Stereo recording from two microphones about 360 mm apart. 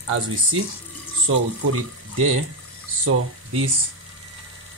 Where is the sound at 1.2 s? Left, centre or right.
Right.